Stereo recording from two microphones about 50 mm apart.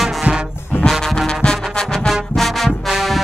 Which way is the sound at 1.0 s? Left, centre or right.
Centre.